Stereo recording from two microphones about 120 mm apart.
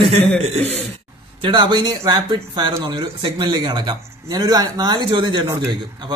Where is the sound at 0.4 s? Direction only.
60° right (ahead or behind).